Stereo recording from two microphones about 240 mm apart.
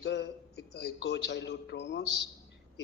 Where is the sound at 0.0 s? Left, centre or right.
Left.